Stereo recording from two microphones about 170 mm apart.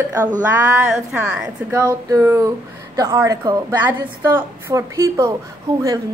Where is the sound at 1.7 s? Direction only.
20° right (ahead or behind).